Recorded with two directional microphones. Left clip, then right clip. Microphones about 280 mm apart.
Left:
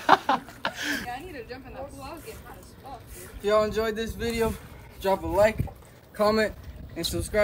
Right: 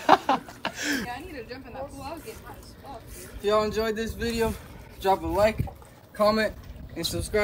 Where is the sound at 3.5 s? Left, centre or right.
Centre.